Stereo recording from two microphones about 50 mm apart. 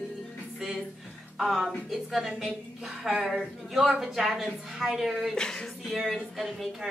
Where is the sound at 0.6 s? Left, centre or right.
Centre.